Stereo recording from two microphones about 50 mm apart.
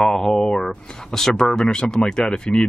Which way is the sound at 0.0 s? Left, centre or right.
Centre.